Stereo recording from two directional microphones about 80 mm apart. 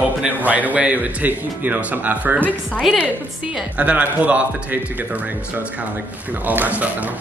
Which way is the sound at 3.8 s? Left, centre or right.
Centre.